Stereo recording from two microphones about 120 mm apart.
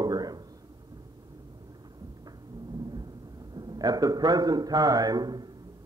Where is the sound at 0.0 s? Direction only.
35° right (ahead or behind).